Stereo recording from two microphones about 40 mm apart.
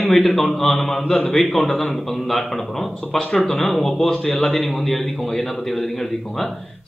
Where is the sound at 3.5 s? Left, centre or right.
Centre.